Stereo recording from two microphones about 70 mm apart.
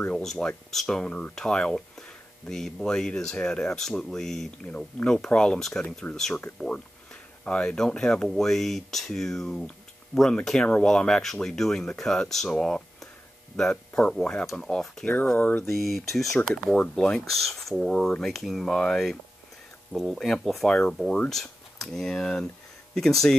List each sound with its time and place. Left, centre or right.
0.1 s speech: centre
7.4 s speech: centre
14.4 s speech: centre
15.3 s a sound: left
15.7 s speech: centre